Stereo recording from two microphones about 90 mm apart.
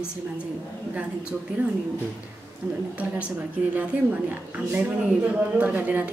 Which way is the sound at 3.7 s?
15° right (ahead or behind).